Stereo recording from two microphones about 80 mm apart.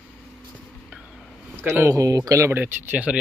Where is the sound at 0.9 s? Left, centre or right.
Centre.